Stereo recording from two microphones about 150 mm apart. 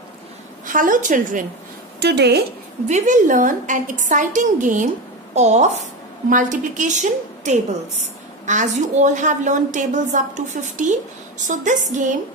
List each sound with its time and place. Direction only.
0.7 s a woman's voice: 65° right (ahead or behind)
2.0 s a woman's voice: 90° right
2.9 s a woman's voice: 55° right (ahead or behind)
6.2 s a woman's voice: 60° right (ahead or behind)